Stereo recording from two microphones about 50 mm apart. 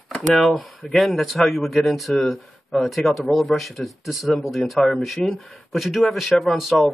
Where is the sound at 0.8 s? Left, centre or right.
Centre.